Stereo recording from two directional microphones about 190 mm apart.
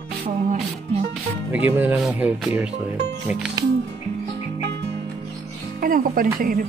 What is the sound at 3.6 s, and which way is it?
Music, 20° right (ahead or behind).